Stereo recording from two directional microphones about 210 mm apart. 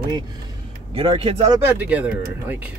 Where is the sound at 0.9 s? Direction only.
25° right (ahead or behind).